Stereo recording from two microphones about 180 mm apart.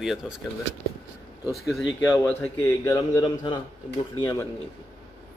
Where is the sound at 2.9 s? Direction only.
25° left (ahead or behind).